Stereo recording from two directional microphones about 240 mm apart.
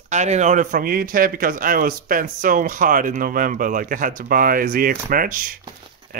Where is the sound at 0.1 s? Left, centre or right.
Right.